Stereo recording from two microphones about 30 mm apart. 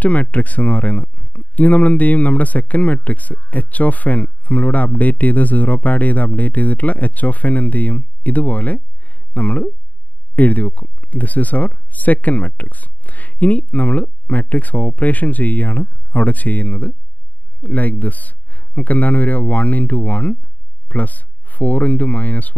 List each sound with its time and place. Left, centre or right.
0.0 s speech: left